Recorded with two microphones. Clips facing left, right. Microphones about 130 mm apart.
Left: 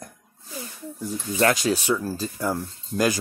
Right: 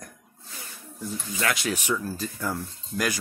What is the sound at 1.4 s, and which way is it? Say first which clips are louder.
Speech: left 7 dB; 35° left (ahead or behind).